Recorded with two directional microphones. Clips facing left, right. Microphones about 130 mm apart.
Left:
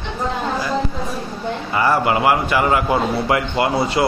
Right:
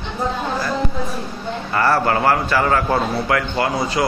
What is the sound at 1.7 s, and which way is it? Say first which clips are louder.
A man's voice: even; 15° left (ahead or behind).